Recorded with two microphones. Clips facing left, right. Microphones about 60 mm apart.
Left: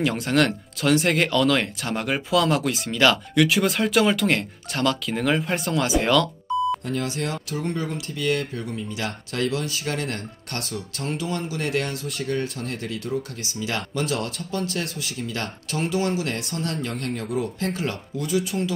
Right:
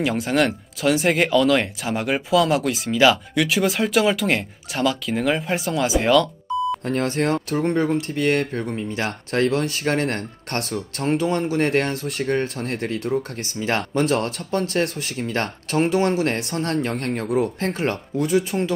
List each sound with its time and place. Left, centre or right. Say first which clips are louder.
0.0 s speech: right 1 dB; centre
6.5 s beep: even; centre
6.9 s speech: right 6 dB; right
16.8 s speech: right 4 dB; right
18.1 s speech: right 4 dB; right